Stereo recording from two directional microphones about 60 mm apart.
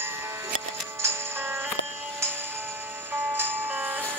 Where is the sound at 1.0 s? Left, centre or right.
Right.